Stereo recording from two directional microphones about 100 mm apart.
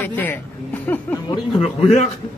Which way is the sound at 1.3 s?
70° left (ahead or behind).